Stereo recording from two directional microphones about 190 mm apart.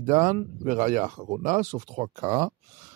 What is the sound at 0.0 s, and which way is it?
Speech, 40° right (ahead or behind).